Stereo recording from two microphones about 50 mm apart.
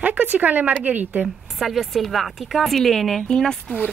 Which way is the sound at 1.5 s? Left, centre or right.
Centre.